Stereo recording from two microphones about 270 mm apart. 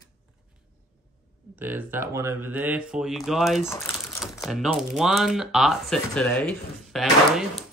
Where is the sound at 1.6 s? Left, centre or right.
Centre.